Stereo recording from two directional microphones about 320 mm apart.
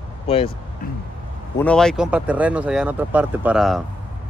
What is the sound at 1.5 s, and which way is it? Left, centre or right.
Speech, centre.